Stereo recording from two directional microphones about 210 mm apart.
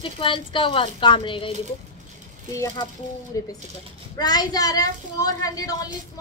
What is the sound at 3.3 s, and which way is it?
A woman's voice, 15° left (ahead or behind).